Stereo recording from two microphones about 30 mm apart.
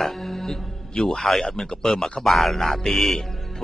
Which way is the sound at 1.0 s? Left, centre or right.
Centre.